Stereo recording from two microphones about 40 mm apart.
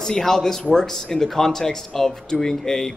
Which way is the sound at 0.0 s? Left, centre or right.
Centre.